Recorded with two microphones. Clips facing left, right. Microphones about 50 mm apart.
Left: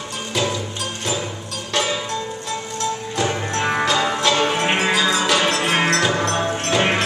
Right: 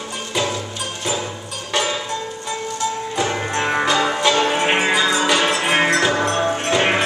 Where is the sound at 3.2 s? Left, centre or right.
Centre.